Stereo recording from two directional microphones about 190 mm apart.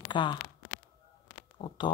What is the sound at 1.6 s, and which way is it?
Speech, 25° left (ahead or behind).